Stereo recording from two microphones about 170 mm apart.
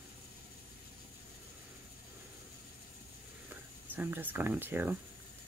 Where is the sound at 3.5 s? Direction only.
10° right (ahead or behind).